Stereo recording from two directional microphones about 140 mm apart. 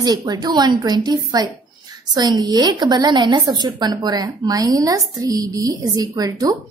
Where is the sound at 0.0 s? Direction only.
30° right (ahead or behind).